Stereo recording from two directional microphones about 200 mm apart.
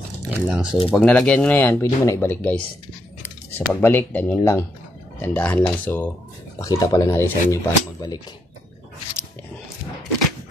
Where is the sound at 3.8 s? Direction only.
10° left (ahead or behind).